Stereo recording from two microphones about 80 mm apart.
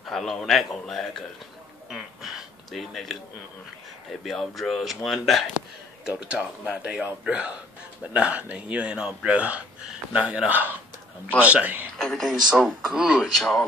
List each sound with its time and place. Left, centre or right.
0.0 s a man's voice: centre
1.9 s a sound: centre
4.2 s a man's voice: centre
6.0 s a man's voice: centre
12.0 s a man's voice: centre
12.6 s speech: centre
13.3 s a man's voice: centre